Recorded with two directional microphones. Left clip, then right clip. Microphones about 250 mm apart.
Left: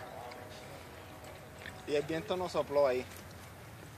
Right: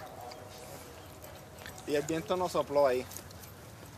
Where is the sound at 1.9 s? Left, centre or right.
Right.